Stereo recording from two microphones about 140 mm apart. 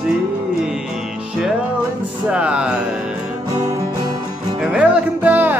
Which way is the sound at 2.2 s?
10° right (ahead or behind).